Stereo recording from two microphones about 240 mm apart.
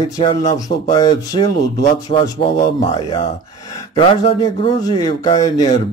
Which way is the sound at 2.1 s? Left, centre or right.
Left.